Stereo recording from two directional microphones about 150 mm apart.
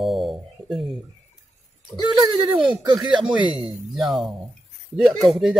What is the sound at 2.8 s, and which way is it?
Speech, 30° right (ahead or behind).